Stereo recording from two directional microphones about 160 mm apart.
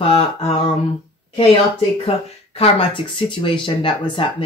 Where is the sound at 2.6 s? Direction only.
35° left (ahead or behind).